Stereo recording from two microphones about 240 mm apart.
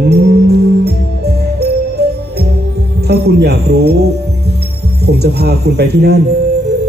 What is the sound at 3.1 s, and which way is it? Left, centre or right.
Jingle bell, right.